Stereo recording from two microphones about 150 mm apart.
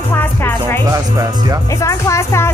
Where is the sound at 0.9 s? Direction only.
25° right (ahead or behind).